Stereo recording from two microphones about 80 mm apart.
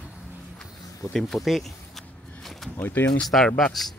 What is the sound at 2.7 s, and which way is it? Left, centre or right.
Speech, left.